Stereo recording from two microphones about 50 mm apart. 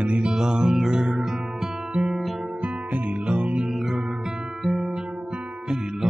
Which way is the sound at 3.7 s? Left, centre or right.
Centre.